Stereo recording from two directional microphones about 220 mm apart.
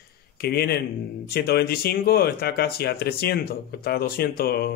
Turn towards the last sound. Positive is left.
turn(degrees=45)  # may be behind; listen again after turning